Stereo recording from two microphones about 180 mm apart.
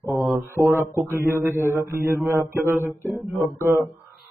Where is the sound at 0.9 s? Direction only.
15° right (ahead or behind).